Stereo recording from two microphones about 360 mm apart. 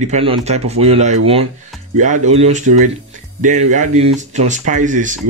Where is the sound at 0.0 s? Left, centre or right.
Centre.